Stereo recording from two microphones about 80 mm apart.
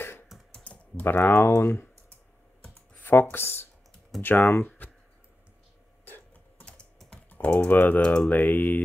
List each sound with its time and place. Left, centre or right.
0.7 s speech: left
3.0 s speech: left
6.6 s typing: centre
7.2 s speech: left